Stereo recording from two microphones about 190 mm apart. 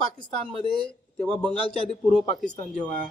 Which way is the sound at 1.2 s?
5° left (ahead or behind).